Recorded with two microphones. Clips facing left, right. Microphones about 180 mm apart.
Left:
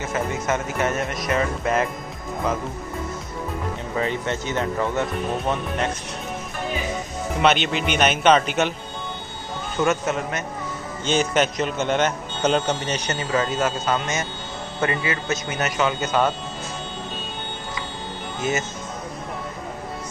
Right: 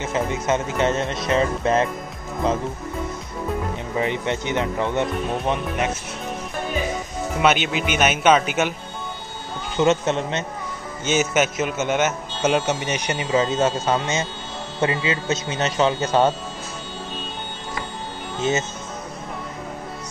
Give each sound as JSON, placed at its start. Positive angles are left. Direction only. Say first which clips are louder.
{"t": 0.0, "sound": "speech", "louder": "right 2 dB", "side_deg": -20}
{"t": 3.9, "sound": "a man's voice", "louder": "right 2 dB", "side_deg": -20}
{"t": 7.4, "sound": "speech", "louder": "even", "side_deg": -5}
{"t": 9.8, "sound": "speech", "louder": "right 3 dB", "side_deg": -25}
{"t": 11.1, "sound": "a man's voice", "louder": "even", "side_deg": -5}
{"t": 18.4, "sound": "speech", "louder": "right 3 dB", "side_deg": -25}